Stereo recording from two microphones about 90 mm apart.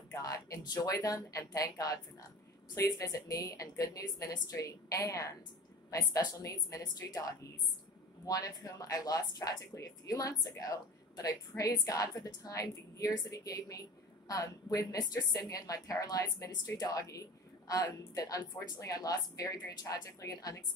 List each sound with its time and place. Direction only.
0.1 s a woman's voice: 40° left (ahead or behind)